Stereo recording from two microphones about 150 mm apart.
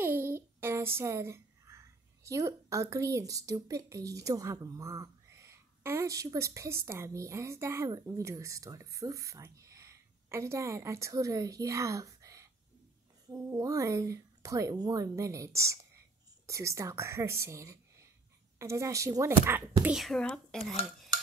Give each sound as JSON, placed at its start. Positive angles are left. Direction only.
{"t": 0.0, "sound": "a woman's voice", "side_deg": -15}
{"t": 20.0, "sound": "speech", "side_deg": 5}